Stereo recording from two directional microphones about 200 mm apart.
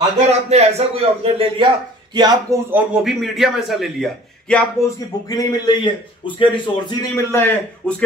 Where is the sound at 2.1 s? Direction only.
20° right (ahead or behind).